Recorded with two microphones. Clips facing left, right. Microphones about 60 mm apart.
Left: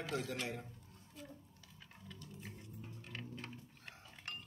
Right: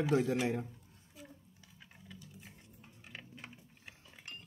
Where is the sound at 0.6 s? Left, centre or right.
Centre.